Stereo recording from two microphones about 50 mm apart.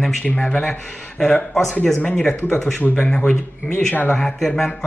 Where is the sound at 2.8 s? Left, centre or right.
Centre.